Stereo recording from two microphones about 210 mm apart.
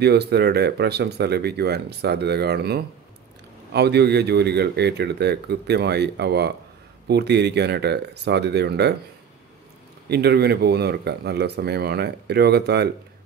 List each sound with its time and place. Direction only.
0.0 s speech: 50° right (ahead or behind)
10.0 s speech: 50° right (ahead or behind)